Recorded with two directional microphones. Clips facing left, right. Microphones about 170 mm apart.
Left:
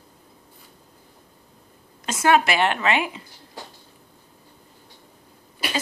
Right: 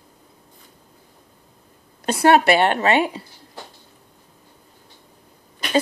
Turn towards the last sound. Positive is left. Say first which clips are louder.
# right 4 dB
turn(degrees=5)  # may be behind; listen again after turning